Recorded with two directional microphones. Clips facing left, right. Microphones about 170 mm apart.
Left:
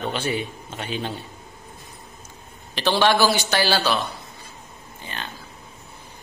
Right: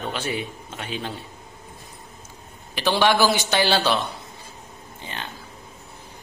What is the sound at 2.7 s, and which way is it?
A man's voice, 10° right (ahead or behind).